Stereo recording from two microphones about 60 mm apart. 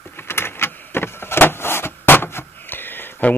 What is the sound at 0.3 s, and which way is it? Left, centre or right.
Vehicle, left.